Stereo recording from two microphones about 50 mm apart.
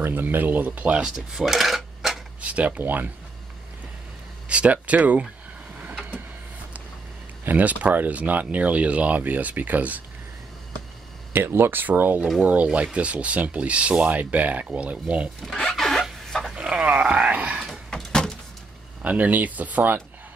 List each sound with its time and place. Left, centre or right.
0.0 s speech: right
1.4 s a sound: centre
2.4 s speech: right
2.8 s speech: right
4.5 s speech: right
7.4 s speech: right
11.3 s speech: right
12.4 s speech: right
15.4 s a sound: centre
16.5 s dog: centre
17.6 s door: centre
19.0 s speech: right